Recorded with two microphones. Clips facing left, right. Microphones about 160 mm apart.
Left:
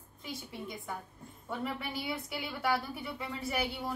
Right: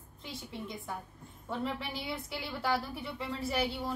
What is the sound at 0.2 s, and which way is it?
A woman's voice, centre (ahead or behind).